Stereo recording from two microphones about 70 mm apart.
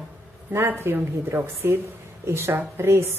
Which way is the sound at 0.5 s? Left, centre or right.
Right.